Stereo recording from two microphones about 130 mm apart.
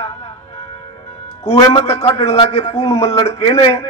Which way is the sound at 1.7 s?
50° left (ahead or behind).